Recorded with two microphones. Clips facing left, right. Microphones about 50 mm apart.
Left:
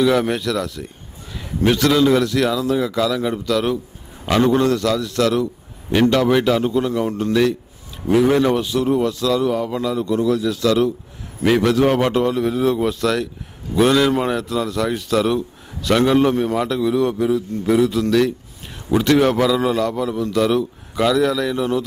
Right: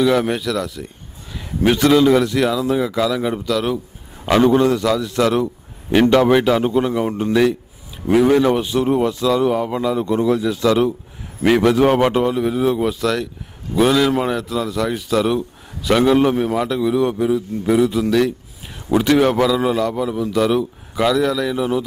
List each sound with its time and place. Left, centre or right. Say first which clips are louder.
0.0 s a man's voice: even; centre
1.3 s a sound: right 1 dB; centre
1.8 s a man's voice: right 3 dB; centre
3.4 s a man's voice: left 2 dB; centre
4.3 s a man's voice: right 2 dB; centre
8.5 s speech: right 1 dB; right
11.4 s a man's voice: right 2 dB; centre